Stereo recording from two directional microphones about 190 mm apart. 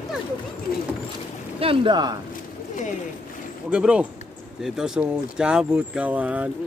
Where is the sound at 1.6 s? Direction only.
25° right (ahead or behind).